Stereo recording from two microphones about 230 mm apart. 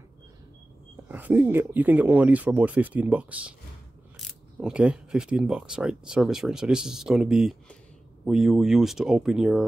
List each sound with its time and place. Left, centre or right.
1.0 s speech: centre